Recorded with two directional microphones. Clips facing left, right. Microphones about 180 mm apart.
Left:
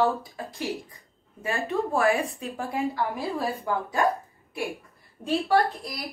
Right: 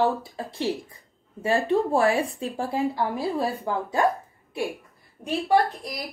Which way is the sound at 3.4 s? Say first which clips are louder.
Right 2 dB; 25° right (ahead or behind).